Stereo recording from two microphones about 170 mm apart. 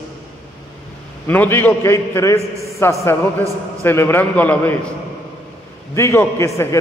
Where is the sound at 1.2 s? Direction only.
10° left (ahead or behind).